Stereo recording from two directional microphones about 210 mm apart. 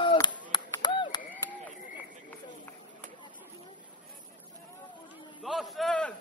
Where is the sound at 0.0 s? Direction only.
20° left (ahead or behind).